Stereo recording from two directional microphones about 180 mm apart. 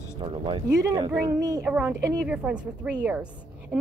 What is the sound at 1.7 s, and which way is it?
A woman's voice, 5° right (ahead or behind).